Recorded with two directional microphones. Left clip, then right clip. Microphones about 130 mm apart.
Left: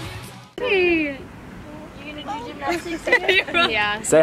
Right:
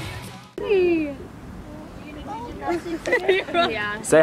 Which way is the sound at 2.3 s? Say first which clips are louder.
Left 2 dB; 30° left (ahead or behind).